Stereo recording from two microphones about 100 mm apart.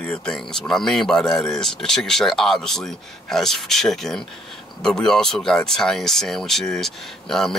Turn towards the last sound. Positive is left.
turn(degrees=5)  # may be behind; listen again after turning